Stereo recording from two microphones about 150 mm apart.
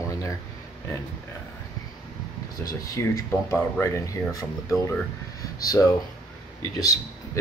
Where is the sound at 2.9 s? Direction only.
20° left (ahead or behind).